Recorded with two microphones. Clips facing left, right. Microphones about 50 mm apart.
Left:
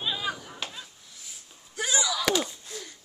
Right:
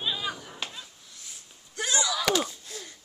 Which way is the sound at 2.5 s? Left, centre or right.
Left.